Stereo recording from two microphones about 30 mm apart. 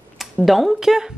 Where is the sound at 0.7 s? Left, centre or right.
Centre.